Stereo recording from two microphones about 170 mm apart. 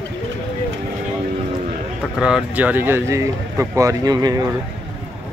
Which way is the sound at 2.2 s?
5° right (ahead or behind).